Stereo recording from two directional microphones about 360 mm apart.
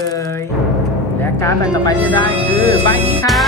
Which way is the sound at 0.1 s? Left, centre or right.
Centre.